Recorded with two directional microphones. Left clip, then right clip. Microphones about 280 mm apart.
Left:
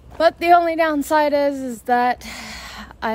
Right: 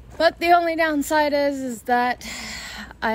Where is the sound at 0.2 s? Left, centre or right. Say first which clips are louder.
Left 3 dB; centre.